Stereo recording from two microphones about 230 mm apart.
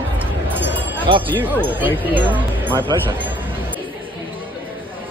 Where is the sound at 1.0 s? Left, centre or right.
Right.